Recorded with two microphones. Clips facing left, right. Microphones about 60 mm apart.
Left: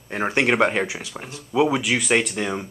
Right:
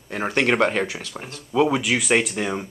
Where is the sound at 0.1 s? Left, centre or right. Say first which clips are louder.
Even; centre.